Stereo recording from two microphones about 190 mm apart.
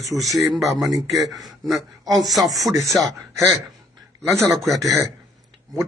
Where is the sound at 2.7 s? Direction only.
15° right (ahead or behind).